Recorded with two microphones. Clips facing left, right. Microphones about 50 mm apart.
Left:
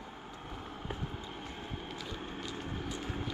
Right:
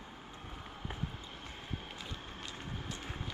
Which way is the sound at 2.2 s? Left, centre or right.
Left.